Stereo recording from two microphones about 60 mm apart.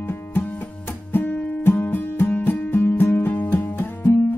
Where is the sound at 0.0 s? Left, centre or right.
Left.